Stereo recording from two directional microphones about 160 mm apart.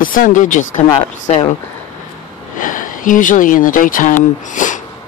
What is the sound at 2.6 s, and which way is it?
Speech, 55° left (ahead or behind).